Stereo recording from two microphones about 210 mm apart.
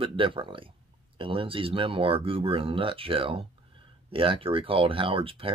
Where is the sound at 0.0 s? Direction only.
25° right (ahead or behind).